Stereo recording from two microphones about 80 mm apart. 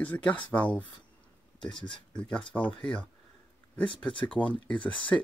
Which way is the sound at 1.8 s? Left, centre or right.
Left.